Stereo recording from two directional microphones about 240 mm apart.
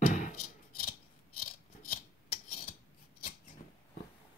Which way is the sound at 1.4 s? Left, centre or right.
Left.